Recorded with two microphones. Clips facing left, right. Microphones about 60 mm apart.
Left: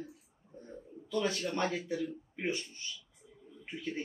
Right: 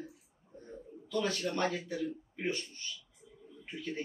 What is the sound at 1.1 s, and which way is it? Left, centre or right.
A man's voice, left.